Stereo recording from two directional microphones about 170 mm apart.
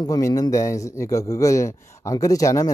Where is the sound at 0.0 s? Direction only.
20° left (ahead or behind).